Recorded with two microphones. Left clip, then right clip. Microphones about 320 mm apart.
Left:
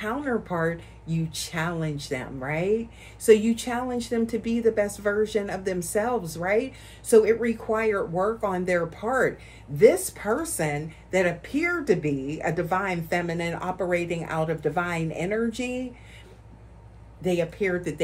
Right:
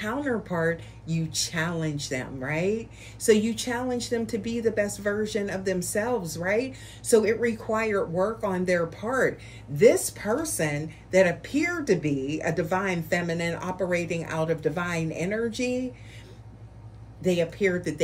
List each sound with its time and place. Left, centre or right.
0.0 s speech: centre
17.2 s speech: centre